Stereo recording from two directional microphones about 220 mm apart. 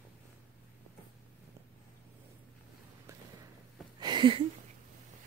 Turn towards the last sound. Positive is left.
turn(degrees=-20)  # may be behind; listen again after turning